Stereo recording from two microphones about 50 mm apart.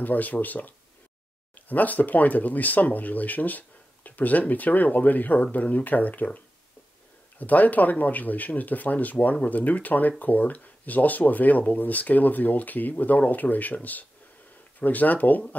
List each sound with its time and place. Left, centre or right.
0.0 s speech: left
14.8 s speech: left